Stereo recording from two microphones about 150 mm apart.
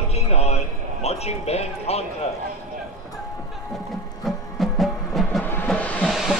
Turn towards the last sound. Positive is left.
turn(degrees=-5)  # may be behind; listen again after turning